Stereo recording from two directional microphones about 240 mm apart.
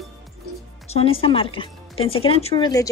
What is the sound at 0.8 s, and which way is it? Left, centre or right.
Speech, left.